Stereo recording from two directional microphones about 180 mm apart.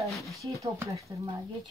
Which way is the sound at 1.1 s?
25° right (ahead or behind).